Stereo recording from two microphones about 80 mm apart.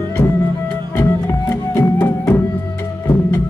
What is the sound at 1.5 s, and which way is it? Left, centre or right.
Music, left.